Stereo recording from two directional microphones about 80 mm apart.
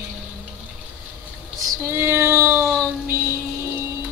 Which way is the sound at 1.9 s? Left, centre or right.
Right.